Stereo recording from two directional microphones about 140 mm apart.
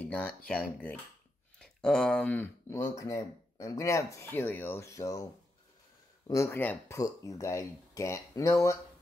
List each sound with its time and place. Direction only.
0.1 s speech: 10° left (ahead or behind)
2.7 s speech: 20° left (ahead or behind)